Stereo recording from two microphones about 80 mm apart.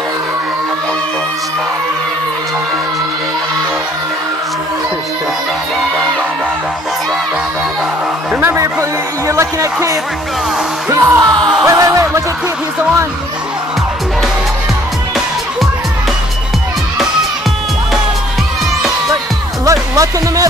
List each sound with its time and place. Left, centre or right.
8.4 s a sound: right
9.3 s music: right
11.2 s music: right
11.6 s music: right
19.6 s music: right